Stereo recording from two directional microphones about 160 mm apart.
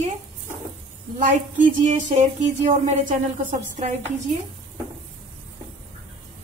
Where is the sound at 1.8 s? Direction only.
50° right (ahead or behind).